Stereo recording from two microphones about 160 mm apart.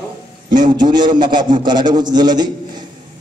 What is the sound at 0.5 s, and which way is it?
A man's voice, 25° right (ahead or behind).